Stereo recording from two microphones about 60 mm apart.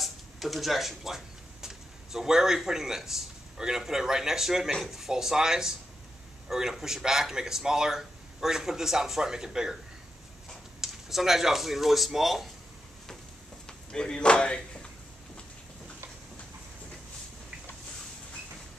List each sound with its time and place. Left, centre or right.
0.0 s speech: centre
10.8 s speech: centre
13.7 s speech: centre